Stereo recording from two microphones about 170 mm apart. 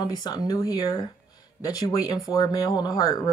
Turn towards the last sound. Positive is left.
turn(degrees=20)  # may be behind; listen again after turning